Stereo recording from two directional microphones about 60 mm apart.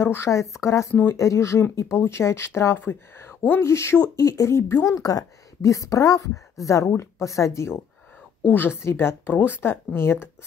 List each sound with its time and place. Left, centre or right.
0.0 s speech: left
4.8 s speech: left
8.5 s speech: left